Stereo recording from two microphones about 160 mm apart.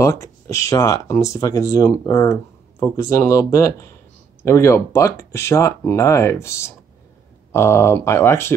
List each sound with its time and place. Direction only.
0.0 s speech: 20° left (ahead or behind)